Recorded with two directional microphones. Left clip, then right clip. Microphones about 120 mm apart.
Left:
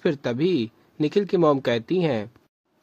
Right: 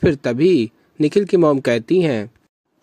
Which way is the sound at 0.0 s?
30° right (ahead or behind).